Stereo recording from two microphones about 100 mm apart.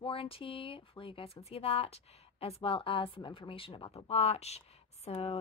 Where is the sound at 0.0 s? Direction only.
65° left (ahead or behind).